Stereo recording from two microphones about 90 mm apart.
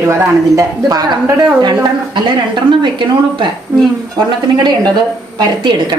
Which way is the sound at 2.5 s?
60° right (ahead or behind).